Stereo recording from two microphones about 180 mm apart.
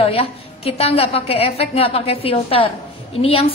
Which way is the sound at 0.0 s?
35° left (ahead or behind).